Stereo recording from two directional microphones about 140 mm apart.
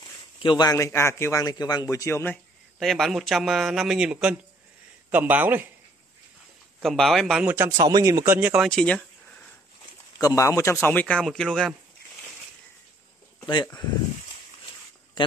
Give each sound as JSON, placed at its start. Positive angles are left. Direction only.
{"t": 0.4, "sound": "a man's voice", "side_deg": 30}
{"t": 2.8, "sound": "a man's voice", "side_deg": 0}
{"t": 6.8, "sound": "a man's voice", "side_deg": 0}
{"t": 7.4, "sound": "a man's voice", "side_deg": -15}
{"t": 8.4, "sound": "a man's voice", "side_deg": -10}
{"t": 8.6, "sound": "a sound", "side_deg": 5}
{"t": 10.1, "sound": "speech", "side_deg": 20}
{"t": 15.2, "sound": "speech", "side_deg": 35}